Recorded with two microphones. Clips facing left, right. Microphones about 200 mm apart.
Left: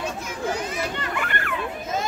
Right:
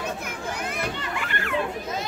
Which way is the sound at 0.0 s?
60° right (ahead or behind).